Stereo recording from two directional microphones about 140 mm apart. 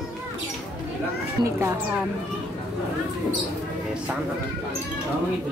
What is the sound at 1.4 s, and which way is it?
Speech, 15° right (ahead or behind).